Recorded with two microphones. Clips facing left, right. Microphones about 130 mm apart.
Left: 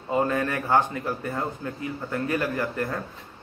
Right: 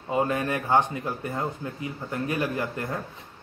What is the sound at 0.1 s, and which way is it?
A man's voice, 15° right (ahead or behind).